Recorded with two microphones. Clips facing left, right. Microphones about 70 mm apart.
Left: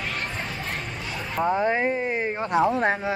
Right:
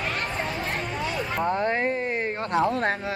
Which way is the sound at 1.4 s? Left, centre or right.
Centre.